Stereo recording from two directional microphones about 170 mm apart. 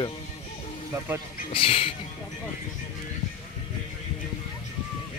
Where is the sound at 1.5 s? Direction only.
35° left (ahead or behind).